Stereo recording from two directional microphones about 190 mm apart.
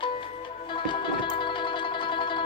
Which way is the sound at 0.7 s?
25° left (ahead or behind).